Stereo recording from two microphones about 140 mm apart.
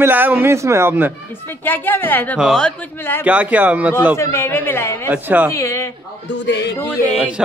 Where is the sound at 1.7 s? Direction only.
15° left (ahead or behind).